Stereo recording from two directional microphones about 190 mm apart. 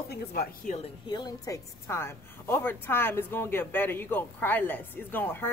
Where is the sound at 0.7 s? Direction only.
25° left (ahead or behind).